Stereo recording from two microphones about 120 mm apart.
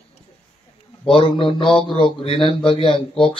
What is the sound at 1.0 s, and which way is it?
Speech, 50° left (ahead or behind).